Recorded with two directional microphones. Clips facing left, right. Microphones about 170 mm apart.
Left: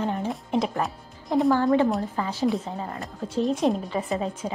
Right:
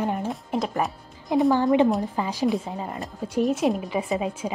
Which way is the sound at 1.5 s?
20° right (ahead or behind).